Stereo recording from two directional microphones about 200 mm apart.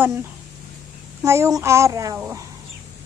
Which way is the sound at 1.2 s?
15° right (ahead or behind).